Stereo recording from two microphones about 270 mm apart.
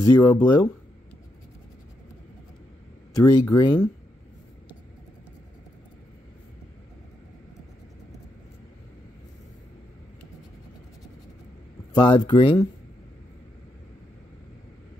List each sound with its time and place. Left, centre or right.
0.0 s speech: centre
3.1 s speech: centre
11.9 s speech: centre